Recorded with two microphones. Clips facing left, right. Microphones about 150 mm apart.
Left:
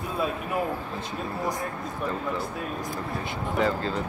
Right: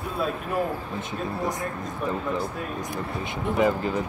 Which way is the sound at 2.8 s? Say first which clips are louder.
Right 1 dB; 20° right (ahead or behind).